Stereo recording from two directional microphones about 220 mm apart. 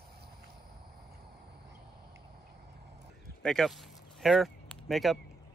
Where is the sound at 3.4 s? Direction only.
Centre (ahead or behind).